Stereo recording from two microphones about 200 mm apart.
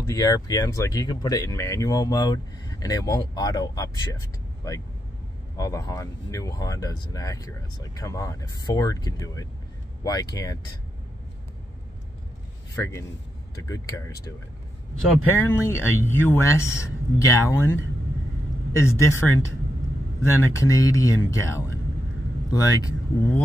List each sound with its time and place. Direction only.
0.0 s speech: 15° left (ahead or behind)
5.6 s speech: 15° left (ahead or behind)
12.7 s speech: 15° left (ahead or behind)